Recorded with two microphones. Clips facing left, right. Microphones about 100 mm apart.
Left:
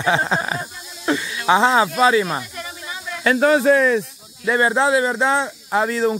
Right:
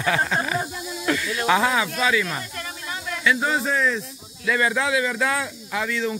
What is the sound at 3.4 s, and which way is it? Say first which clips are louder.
Speech: left 8 dB; 65° left (ahead or behind).